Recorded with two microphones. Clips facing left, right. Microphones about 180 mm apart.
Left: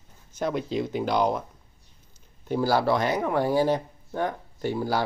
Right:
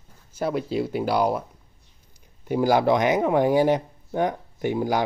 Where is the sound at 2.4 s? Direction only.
15° right (ahead or behind).